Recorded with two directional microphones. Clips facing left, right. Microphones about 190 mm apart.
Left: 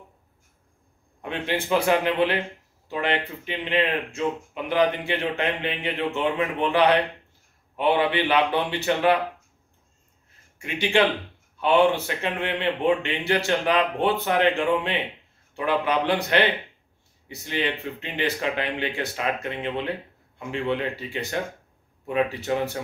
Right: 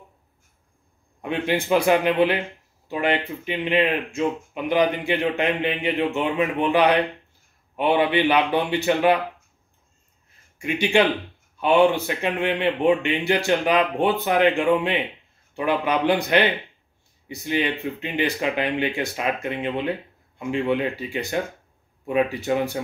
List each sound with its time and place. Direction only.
1.2 s speech: 15° right (ahead or behind)
10.6 s speech: 15° right (ahead or behind)